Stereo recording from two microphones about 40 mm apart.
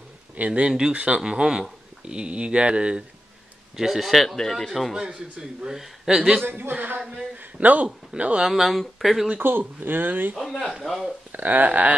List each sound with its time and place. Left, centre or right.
0.5 s speech: right
0.9 s speech: right
1.2 s speech: centre
3.7 s speech: centre
4.9 s speech: centre
6.4 s speech: right
7.5 s speech: right
8.5 s speech: centre
9.4 s speech: right
10.3 s speech: centre
11.3 s speech: right